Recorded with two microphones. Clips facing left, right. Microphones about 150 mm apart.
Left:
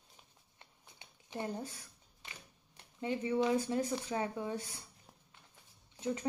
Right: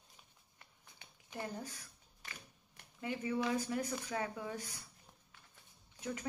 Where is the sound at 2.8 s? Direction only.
25° left (ahead or behind).